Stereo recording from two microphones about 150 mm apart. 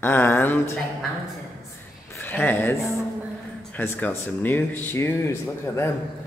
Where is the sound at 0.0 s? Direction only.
15° left (ahead or behind).